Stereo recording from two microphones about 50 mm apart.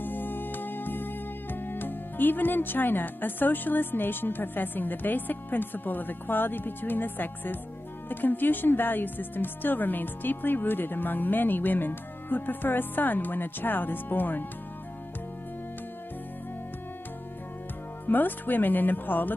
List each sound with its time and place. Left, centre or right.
0.0 s music: left
8.1 s speech: left
18.0 s speech: left